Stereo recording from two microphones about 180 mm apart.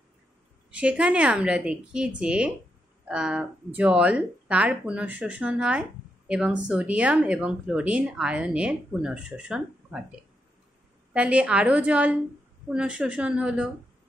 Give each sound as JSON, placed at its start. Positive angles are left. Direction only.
{"t": 0.7, "sound": "a woman's voice", "side_deg": -5}
{"t": 11.1, "sound": "a woman's voice", "side_deg": -5}